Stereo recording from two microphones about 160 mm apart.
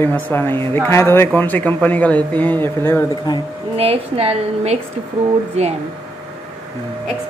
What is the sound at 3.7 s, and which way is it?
A woman's voice, 40° right (ahead or behind).